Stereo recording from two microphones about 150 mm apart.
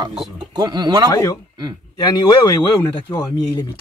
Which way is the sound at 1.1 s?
20° left (ahead or behind).